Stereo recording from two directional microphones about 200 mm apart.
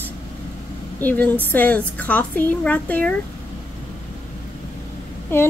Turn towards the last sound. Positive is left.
turn(degrees=10)  # may be behind; listen again after turning